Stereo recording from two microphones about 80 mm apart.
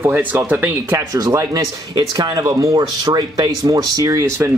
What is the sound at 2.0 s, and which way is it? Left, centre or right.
Speech, right.